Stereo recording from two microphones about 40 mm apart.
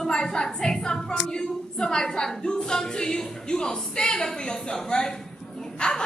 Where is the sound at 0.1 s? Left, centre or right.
Centre.